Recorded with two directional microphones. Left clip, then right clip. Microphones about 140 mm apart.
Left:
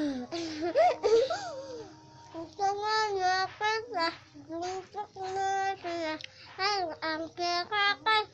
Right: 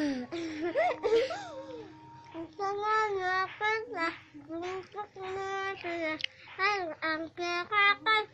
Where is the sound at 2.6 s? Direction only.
20° left (ahead or behind).